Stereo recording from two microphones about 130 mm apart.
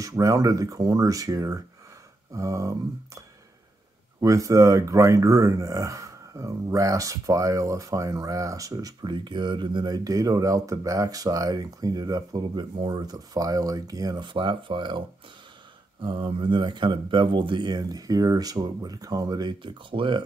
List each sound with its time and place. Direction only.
0.0 s speech: 25° right (ahead or behind)